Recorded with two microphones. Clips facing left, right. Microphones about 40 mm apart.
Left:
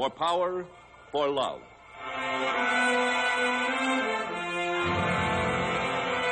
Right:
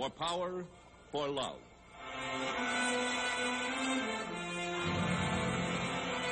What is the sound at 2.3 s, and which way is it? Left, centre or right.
Music, left.